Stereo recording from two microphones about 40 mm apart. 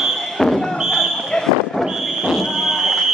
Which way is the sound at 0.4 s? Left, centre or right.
Centre.